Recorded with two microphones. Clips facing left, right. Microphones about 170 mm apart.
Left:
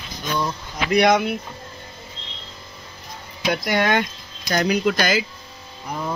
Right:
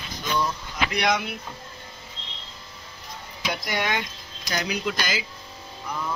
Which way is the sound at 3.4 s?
60° left (ahead or behind).